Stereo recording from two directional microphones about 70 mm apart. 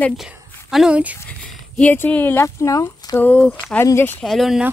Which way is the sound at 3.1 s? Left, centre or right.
Left.